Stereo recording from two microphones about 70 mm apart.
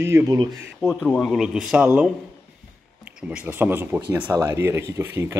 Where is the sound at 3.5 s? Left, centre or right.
Right.